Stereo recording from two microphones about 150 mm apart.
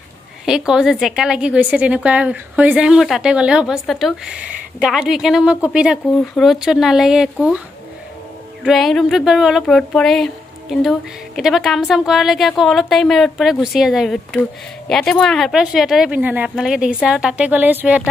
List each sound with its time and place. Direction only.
0.5 s speech: 5° right (ahead or behind)
8.6 s speech: centre (ahead or behind)